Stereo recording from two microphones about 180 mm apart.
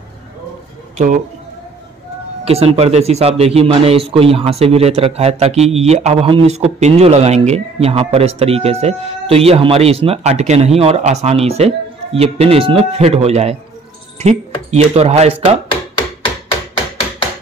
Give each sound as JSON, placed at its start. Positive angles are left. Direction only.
{"t": 0.9, "sound": "speech", "side_deg": -50}
{"t": 2.4, "sound": "a man's voice", "side_deg": -35}